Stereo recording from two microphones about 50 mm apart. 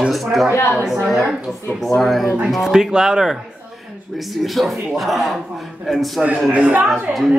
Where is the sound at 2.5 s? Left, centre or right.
Centre.